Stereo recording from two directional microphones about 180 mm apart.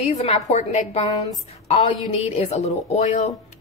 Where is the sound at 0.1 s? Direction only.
35° left (ahead or behind).